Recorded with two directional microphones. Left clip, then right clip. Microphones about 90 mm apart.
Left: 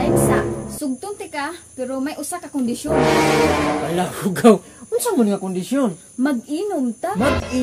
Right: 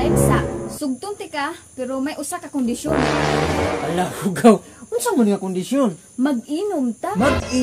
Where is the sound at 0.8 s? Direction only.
20° right (ahead or behind).